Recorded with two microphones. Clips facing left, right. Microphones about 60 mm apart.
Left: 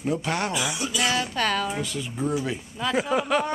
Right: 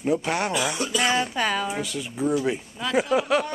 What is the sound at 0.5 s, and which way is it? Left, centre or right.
Speech, right.